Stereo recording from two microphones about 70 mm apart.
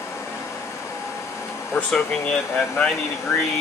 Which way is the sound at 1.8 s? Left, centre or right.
Centre.